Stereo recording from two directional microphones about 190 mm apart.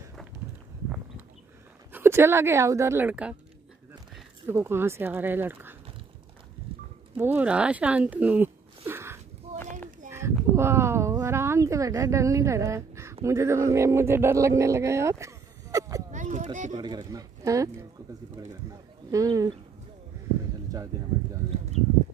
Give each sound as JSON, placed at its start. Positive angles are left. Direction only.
{"t": 1.9, "sound": "speech", "side_deg": -10}
{"t": 4.5, "sound": "speech", "side_deg": -10}
{"t": 7.2, "sound": "speech", "side_deg": -10}
{"t": 14.6, "sound": "a sound", "side_deg": -15}
{"t": 16.1, "sound": "a sound", "side_deg": -40}
{"t": 16.7, "sound": "speech", "side_deg": -20}
{"t": 19.0, "sound": "speech", "side_deg": -15}